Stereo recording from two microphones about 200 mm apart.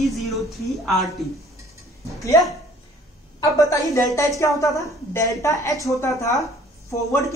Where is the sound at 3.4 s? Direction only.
15° left (ahead or behind).